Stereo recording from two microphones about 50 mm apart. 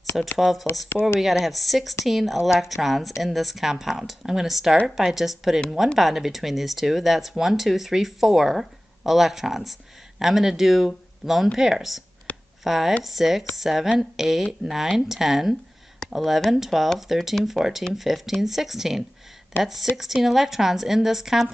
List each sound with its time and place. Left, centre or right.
0.4 s speech: centre
0.9 s speech: left
1.2 s speech: centre
12.3 s a sound: left
12.6 s speech: centre
16.0 s a sound: centre
16.4 s speech: centre